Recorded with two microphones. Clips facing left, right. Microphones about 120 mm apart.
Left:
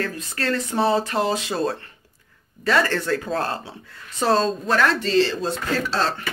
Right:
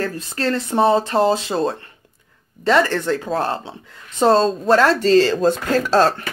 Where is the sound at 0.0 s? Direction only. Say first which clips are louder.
Right 4 dB; 30° right (ahead or behind); by 6.2 s 45° right (ahead or behind).